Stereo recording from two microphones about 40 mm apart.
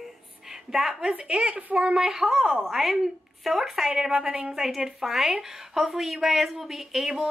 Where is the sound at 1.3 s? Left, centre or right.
Right.